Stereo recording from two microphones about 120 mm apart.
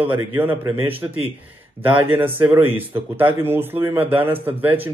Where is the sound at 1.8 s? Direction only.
15° right (ahead or behind).